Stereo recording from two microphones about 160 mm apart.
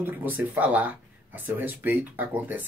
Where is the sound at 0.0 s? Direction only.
10° right (ahead or behind).